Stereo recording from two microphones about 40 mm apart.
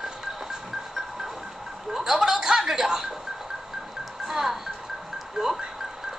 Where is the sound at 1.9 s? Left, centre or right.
Centre.